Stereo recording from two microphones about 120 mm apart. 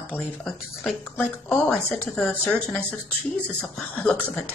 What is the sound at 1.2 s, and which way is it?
Speech, 15° left (ahead or behind).